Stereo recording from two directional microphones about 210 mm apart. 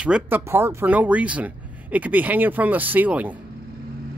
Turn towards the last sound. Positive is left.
turn(degrees=-5)  # may be behind; listen again after turning